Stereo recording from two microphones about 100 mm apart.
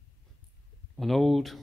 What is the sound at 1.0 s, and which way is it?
Speech, centre (ahead or behind).